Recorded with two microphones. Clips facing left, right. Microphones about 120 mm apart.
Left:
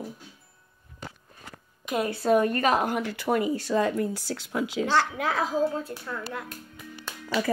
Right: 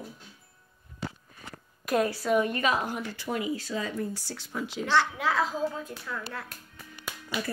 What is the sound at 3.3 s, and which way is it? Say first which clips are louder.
Speech: left 6 dB; 50° left (ahead or behind).